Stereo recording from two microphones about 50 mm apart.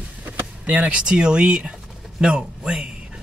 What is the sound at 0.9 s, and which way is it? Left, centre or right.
Speech, centre.